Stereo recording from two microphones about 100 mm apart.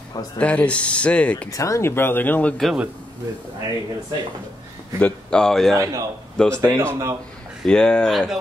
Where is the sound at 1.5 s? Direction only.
35° left (ahead or behind).